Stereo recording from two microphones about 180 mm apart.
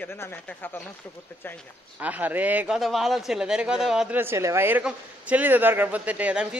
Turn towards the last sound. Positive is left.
turn(degrees=-10)  # may be behind; listen again after turning